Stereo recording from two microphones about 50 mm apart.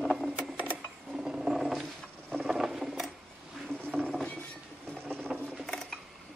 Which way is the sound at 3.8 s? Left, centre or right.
Right.